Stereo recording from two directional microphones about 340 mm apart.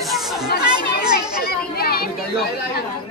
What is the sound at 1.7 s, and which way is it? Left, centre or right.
Speech, left.